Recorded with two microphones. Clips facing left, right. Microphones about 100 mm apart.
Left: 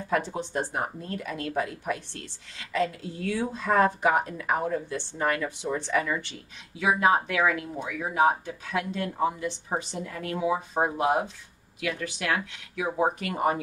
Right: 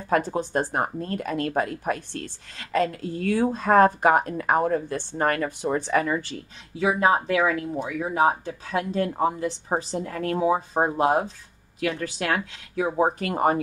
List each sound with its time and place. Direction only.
0.1 s speech: 45° right (ahead or behind)